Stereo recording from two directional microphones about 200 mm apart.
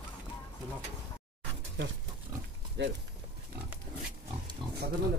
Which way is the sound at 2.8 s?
60° right (ahead or behind).